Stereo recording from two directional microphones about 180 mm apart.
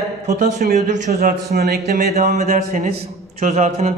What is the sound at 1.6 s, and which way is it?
Speech, 60° right (ahead or behind).